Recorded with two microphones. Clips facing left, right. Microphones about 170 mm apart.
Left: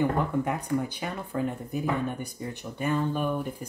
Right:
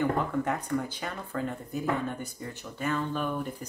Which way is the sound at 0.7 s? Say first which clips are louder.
Left 2 dB; 15° left (ahead or behind).